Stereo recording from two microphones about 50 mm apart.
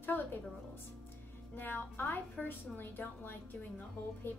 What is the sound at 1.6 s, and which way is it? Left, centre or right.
Speech, left.